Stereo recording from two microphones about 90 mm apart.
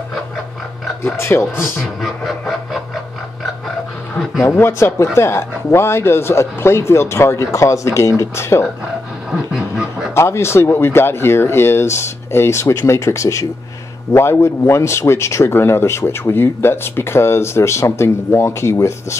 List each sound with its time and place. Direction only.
1.0 s speech: 30° left (ahead or behind)
2.0 s a sound: centre (ahead or behind)
4.2 s a sound: centre (ahead or behind)
4.5 s speech: 30° left (ahead or behind)
9.3 s duck: 5° right (ahead or behind)
10.1 s speech: 30° left (ahead or behind)